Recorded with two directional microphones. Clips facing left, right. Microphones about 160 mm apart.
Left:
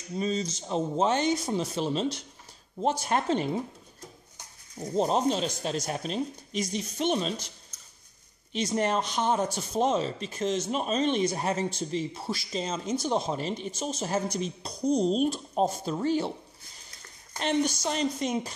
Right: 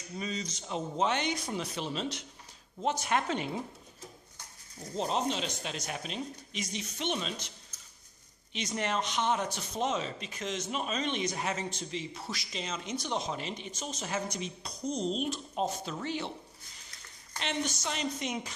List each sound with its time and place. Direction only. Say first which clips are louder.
0.2 s speech: left 8 dB; 30° left (ahead or behind)
4.7 s speech: left 6 dB; 45° left (ahead or behind)
8.5 s speech: left 6 dB; 40° left (ahead or behind)
17.4 s a woman's voice: left 8 dB; 45° left (ahead or behind)